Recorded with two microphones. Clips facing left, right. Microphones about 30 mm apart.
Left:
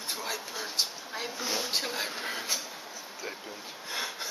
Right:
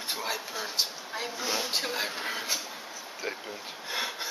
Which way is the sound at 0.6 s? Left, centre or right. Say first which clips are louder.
Right 1 dB; centre.